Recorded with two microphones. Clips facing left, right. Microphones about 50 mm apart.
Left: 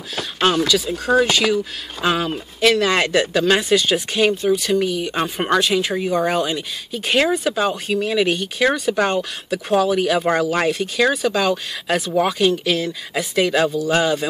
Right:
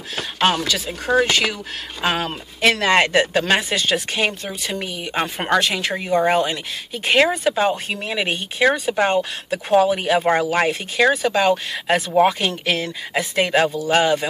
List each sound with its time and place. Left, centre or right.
0.4 s speech: right
4.5 s speech: right
5.6 s speech: right